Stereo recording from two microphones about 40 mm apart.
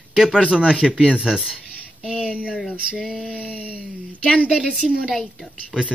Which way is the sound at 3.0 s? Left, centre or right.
Centre.